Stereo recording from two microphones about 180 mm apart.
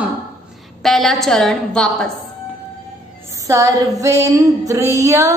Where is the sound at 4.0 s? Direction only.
15° right (ahead or behind).